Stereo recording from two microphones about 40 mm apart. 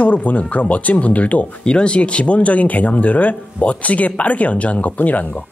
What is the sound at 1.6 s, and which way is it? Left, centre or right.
Speech, left.